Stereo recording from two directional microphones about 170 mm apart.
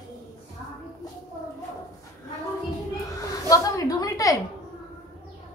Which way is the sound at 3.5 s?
20° left (ahead or behind).